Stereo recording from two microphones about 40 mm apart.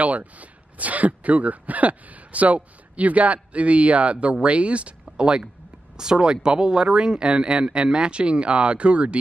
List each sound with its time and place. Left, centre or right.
0.0 s speech: right